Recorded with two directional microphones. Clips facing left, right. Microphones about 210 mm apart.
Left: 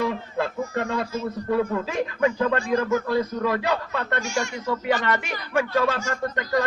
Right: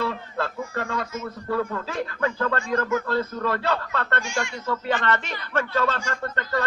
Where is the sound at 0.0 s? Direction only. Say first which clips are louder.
Left 3 dB; 15° left (ahead or behind).